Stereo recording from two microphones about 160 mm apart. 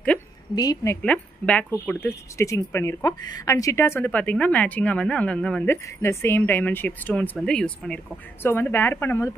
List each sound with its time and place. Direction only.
0.6 s a woman's voice: 25° left (ahead or behind)
1.0 s speech: 10° left (ahead or behind)